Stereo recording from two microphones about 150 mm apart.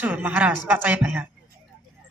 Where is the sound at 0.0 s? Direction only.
10° right (ahead or behind).